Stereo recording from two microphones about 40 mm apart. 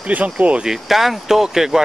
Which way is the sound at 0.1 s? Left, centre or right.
Right.